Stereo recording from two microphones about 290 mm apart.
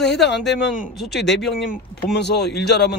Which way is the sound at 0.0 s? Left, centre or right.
Left.